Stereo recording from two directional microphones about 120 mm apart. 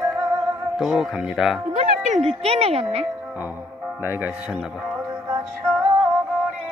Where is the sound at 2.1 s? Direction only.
65° right (ahead or behind).